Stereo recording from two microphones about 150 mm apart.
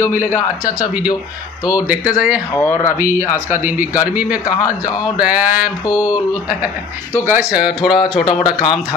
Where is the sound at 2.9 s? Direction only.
20° right (ahead or behind).